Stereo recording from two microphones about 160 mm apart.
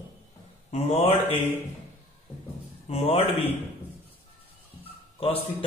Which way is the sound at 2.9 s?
40° left (ahead or behind).